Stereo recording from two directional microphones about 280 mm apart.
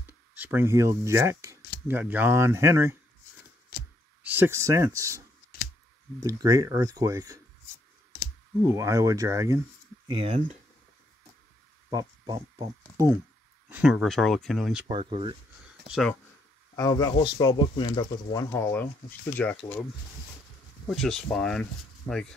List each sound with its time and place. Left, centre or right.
0.0 s speech: centre
4.2 s speech: centre
6.2 s speech: centre
8.6 s speech: centre
10.1 s speech: right
11.9 s a sound: centre
13.7 s speech: centre
14.9 s speech: centre
15.9 s speech: centre
16.7 s speech: centre
20.9 s speech: centre